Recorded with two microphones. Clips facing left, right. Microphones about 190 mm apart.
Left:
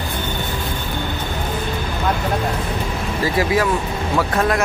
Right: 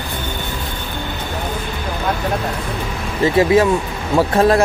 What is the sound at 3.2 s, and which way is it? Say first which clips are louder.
Speech: right 6 dB; 25° right (ahead or behind).